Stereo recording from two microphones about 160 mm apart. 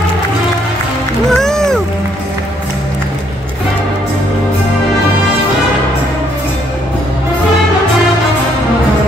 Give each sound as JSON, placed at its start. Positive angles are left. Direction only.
{"t": 1.3, "sound": "music", "side_deg": 5}